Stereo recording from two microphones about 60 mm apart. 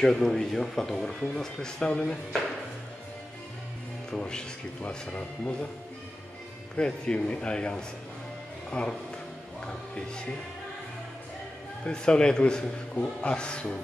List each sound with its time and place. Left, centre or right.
0.0 s speech: centre
4.1 s speech: centre
6.8 s speech: centre
9.7 s music: centre
11.8 s speech: centre